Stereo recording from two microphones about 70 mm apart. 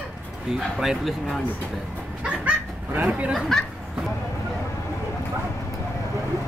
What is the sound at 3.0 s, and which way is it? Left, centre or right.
Speech, centre.